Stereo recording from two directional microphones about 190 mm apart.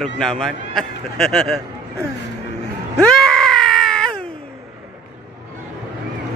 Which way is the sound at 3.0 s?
5° left (ahead or behind).